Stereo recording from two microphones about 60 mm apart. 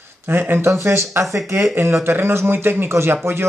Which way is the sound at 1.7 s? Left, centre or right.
Right.